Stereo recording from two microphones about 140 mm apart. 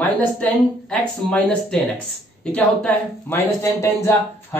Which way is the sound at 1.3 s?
5° left (ahead or behind).